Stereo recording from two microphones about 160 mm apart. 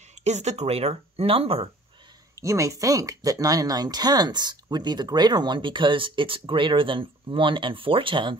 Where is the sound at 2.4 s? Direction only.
20° right (ahead or behind).